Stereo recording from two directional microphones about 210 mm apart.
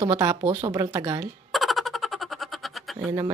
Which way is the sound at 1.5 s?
Centre (ahead or behind).